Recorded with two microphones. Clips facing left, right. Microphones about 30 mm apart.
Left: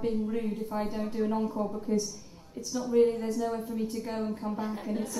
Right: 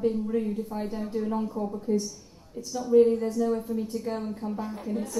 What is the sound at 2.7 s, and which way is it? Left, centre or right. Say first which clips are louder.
A woman's voice: right 4 dB; centre.